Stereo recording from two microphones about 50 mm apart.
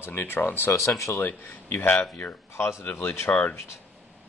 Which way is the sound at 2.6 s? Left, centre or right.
Left.